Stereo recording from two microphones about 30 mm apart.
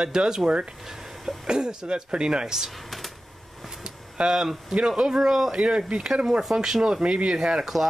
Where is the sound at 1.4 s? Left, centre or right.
Right.